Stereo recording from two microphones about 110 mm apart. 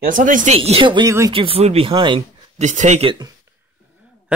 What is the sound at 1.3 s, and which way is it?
Speech, 55° right (ahead or behind).